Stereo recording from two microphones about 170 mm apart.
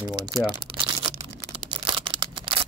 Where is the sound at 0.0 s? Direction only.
25° right (ahead or behind).